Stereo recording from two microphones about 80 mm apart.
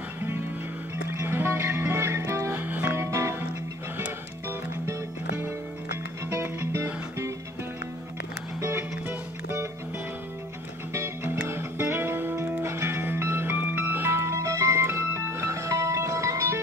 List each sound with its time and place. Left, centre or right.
1.2 s music: right
2.5 s music: right
6.3 s music: right
8.5 s music: right
10.9 s music: right